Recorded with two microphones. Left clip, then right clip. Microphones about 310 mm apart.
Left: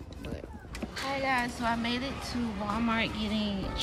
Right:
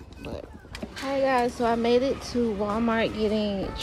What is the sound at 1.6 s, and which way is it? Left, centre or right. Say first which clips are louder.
Music: right 8 dB; centre.